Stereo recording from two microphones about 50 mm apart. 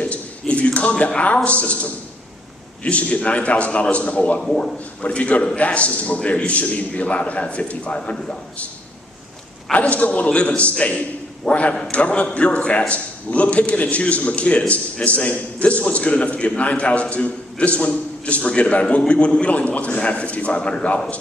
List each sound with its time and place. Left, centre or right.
0.0 s a sound: left
2.8 s a man's voice: left
9.7 s a man's voice: left
11.4 s a man's voice: centre
11.9 s a man's voice: left